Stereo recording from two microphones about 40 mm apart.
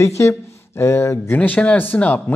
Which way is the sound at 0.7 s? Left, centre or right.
Left.